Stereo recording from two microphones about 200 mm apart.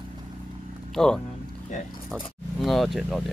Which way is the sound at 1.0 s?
5° left (ahead or behind).